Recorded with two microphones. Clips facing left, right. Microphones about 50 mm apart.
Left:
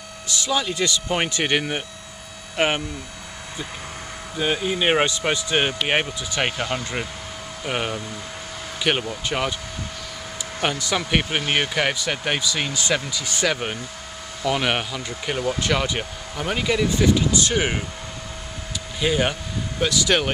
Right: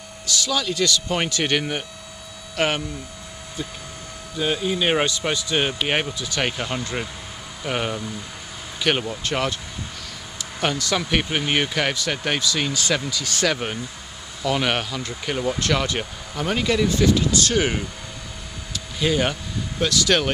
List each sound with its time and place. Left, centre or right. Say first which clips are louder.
0.3 s speech: even; left
4.4 s speech: even; centre
6.5 s speech: left 2 dB; centre
6.8 s speech: even; centre
10.6 s speech: right 1 dB; centre
18.9 s speech: even; centre